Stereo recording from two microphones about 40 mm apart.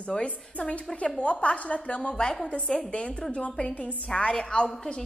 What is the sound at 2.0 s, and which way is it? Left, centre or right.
A woman's voice, centre.